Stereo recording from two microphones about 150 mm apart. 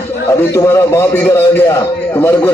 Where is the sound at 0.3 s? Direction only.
20° left (ahead or behind).